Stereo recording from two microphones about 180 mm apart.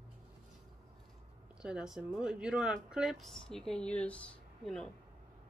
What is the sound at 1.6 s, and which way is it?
Speech, 5° right (ahead or behind).